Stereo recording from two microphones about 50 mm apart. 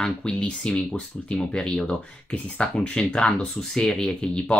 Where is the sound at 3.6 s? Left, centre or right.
Centre.